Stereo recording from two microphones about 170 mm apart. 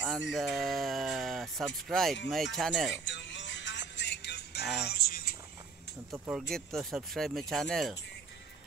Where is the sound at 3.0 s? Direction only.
90° left.